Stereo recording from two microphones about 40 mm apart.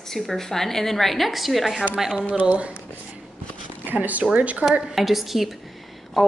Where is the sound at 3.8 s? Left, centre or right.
Right.